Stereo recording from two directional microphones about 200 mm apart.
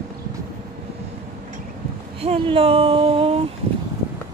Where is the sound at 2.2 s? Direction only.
30° right (ahead or behind).